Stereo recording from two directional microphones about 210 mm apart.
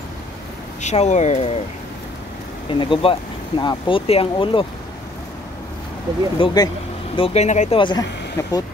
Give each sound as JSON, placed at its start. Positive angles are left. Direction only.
{"t": 0.8, "sound": "speech", "side_deg": 35}
{"t": 2.7, "sound": "speech", "side_deg": 25}
{"t": 6.3, "sound": "speech", "side_deg": 20}
{"t": 7.8, "sound": "speech", "side_deg": 20}